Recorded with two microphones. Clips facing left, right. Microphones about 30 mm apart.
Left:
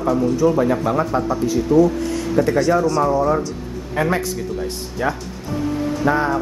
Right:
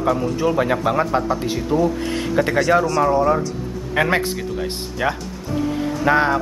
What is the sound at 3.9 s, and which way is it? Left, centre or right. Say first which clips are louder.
Speech: right 2 dB; right.